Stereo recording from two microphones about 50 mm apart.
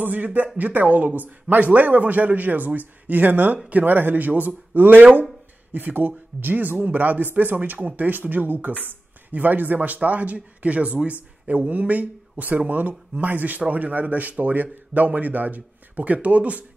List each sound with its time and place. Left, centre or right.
0.0 s a man's voice: right